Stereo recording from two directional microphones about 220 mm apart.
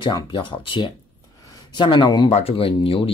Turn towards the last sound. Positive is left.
turn(degrees=25)  # may be behind; listen again after turning